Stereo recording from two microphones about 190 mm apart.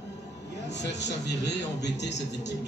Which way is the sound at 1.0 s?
65° left (ahead or behind).